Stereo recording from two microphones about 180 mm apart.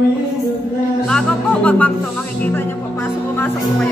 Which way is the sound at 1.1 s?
5° left (ahead or behind).